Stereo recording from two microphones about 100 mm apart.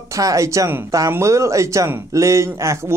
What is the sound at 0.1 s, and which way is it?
Speech, 35° right (ahead or behind).